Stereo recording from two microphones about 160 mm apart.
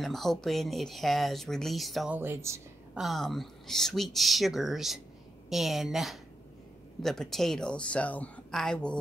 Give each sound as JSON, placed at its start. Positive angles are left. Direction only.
{"t": 0.0, "sound": "speech", "side_deg": 0}
{"t": 2.1, "sound": "speech", "side_deg": -15}
{"t": 2.9, "sound": "speech", "side_deg": 0}